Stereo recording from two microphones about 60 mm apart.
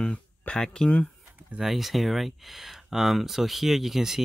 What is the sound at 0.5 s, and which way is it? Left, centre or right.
Speech, centre.